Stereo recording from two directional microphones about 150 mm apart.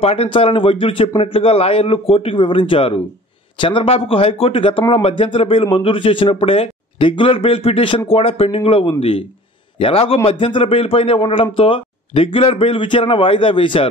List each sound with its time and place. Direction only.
0.0 s speech: 40° left (ahead or behind)